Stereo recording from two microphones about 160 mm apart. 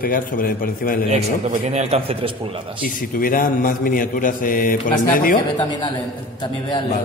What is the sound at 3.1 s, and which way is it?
A man's voice, 60° left (ahead or behind).